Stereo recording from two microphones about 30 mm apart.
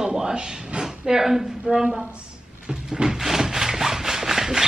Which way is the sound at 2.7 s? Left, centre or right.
Right.